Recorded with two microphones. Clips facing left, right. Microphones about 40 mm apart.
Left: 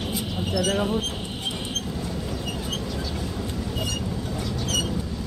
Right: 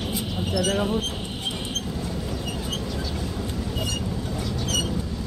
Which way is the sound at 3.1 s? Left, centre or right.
Centre.